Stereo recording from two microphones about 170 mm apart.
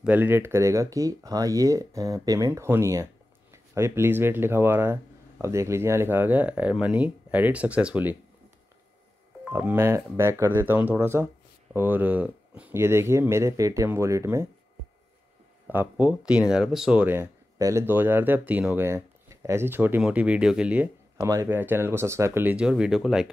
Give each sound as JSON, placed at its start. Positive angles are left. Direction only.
{"t": 0.0, "sound": "speech", "side_deg": -10}
{"t": 9.4, "sound": "speech", "side_deg": -10}
{"t": 15.7, "sound": "speech", "side_deg": -10}
{"t": 21.2, "sound": "speech", "side_deg": -20}